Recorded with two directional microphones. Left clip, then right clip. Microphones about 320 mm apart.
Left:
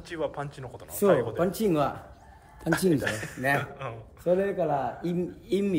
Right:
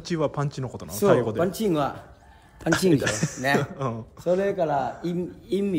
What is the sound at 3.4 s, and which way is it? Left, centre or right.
Speech, centre.